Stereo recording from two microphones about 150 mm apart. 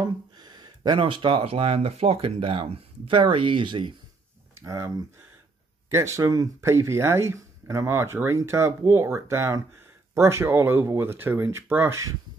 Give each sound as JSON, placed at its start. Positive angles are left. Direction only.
{"t": 0.0, "sound": "speech", "side_deg": -30}
{"t": 4.6, "sound": "speech", "side_deg": -20}